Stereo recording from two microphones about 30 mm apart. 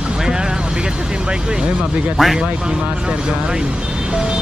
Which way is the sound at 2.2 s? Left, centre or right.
Centre.